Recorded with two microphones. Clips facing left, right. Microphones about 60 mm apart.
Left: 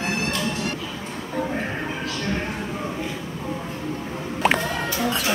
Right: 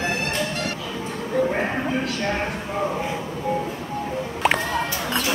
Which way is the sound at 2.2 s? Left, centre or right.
Right.